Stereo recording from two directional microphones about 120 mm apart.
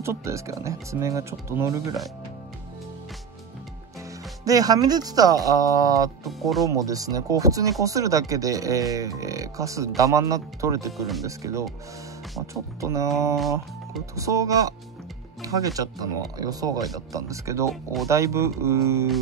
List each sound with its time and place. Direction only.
0.0 s speech: 25° right (ahead or behind)
4.5 s speech: 30° right (ahead or behind)
6.2 s speech: centre (ahead or behind)
6.7 s speech: 30° right (ahead or behind)
10.9 s speech: centre (ahead or behind)
11.2 s speech: 25° right (ahead or behind)
12.8 s speech: 25° right (ahead or behind)
13.4 s speech: centre (ahead or behind)
14.1 s speech: 25° right (ahead or behind)